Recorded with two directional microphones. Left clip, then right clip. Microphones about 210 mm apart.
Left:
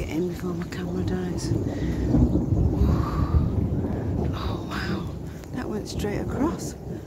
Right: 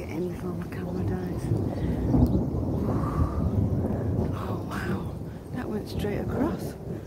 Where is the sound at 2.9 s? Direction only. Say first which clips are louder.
Left 1 dB; 10° left (ahead or behind).